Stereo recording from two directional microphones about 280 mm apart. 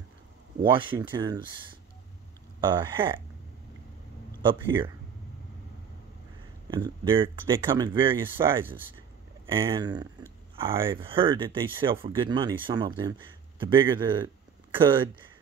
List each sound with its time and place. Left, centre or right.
0.7 s speech: centre
2.6 s speech: centre
4.4 s speech: centre
6.7 s speech: centre